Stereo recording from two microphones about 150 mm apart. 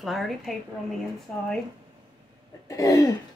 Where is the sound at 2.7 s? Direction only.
20° left (ahead or behind).